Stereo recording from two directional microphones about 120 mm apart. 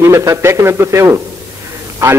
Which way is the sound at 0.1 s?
25° right (ahead or behind).